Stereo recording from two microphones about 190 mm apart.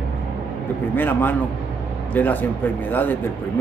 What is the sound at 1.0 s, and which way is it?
Speech, 10° left (ahead or behind).